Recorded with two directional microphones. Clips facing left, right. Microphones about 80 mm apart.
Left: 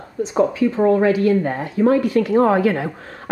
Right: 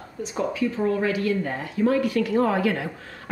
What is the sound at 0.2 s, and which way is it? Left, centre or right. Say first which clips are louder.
A woman's voice: left 8 dB; left.